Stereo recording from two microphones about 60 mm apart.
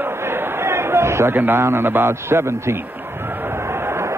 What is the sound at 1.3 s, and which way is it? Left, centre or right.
A man's voice, right.